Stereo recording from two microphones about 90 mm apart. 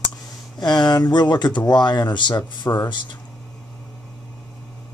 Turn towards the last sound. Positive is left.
turn(degrees=60)  # may be behind; listen again after turning